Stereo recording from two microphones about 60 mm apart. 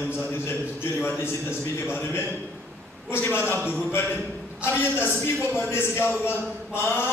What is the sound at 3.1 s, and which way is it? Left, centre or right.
A man's voice, left.